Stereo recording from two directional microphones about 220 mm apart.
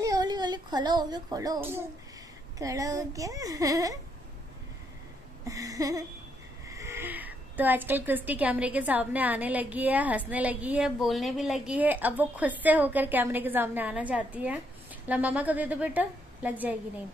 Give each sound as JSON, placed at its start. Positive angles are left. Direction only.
{"t": 0.0, "sound": "a child's voice", "side_deg": -20}
{"t": 5.5, "sound": "a woman's voice", "side_deg": -15}